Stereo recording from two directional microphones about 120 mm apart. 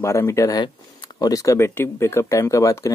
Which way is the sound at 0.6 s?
40° left (ahead or behind).